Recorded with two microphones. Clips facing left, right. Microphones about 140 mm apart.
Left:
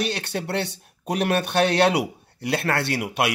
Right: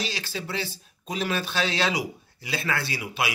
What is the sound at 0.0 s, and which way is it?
A man's voice, 60° left (ahead or behind).